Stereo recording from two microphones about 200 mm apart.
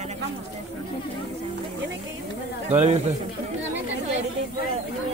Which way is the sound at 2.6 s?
30° right (ahead or behind).